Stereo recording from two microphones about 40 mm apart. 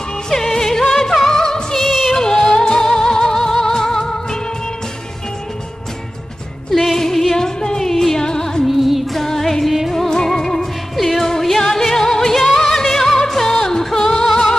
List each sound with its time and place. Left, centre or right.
0.3 s music: centre
1.9 s music: centre
2.1 s music: centre
6.7 s music: centre
8.2 s music: centre
8.6 s music: centre
9.2 s music: centre